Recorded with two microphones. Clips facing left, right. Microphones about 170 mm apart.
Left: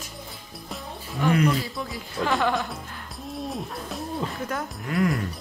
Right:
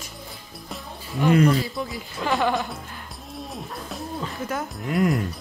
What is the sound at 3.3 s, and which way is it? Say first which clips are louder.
Music: left 3 dB; centre (ahead or behind).